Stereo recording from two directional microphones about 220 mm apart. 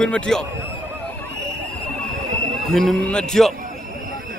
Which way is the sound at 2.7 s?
Centre (ahead or behind).